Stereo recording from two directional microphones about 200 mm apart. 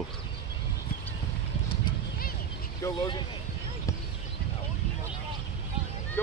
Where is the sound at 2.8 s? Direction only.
20° left (ahead or behind).